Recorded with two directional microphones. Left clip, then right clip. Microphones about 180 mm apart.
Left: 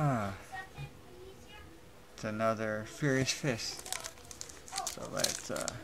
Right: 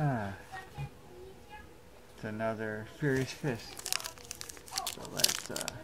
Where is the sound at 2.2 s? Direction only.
20° left (ahead or behind).